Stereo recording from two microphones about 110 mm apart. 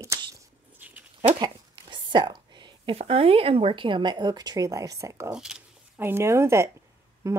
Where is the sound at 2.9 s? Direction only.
60° right (ahead or behind).